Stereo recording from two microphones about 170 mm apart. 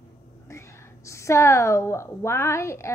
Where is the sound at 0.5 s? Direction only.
15° left (ahead or behind).